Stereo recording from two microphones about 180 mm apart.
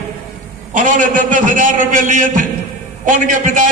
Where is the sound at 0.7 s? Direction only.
45° right (ahead or behind).